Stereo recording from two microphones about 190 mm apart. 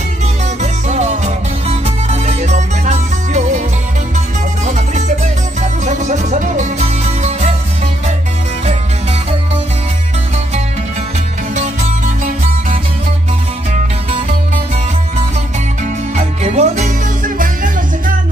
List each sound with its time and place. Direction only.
0.6 s music: 35° right (ahead or behind)
4.6 s music: 40° right (ahead or behind)
11.5 s music: 40° right (ahead or behind)
16.2 s music: 35° right (ahead or behind)